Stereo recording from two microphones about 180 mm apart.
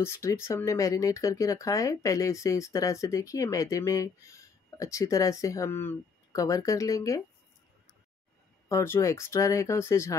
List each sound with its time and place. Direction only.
0.0 s speech: 15° left (ahead or behind)
8.6 s speech: 15° left (ahead or behind)